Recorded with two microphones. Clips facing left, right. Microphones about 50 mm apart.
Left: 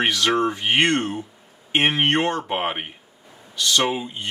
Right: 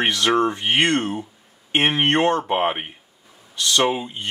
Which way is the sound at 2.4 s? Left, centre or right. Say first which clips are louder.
Right 4 dB; centre.